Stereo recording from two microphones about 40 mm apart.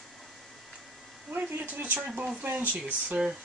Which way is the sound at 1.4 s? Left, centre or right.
Right.